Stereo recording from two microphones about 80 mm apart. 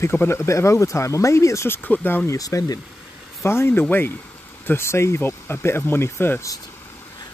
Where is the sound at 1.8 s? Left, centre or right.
Left.